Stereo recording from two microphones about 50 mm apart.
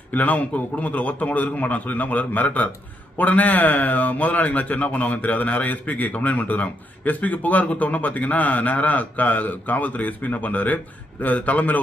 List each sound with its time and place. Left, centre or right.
0.1 s speech: left